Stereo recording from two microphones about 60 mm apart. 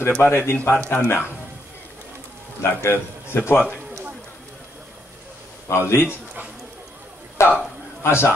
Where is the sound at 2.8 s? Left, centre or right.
Left.